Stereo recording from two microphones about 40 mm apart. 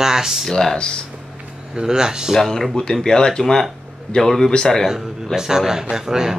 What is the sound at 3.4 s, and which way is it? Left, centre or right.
Speech, centre.